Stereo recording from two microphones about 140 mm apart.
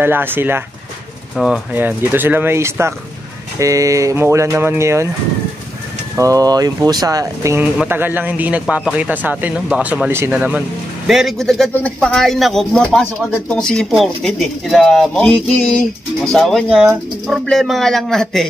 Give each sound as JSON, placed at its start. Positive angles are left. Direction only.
{"t": 0.0, "sound": "speech", "side_deg": -15}
{"t": 1.3, "sound": "speech", "side_deg": -5}
{"t": 6.1, "sound": "speech", "side_deg": -25}
{"t": 11.1, "sound": "speech", "side_deg": 0}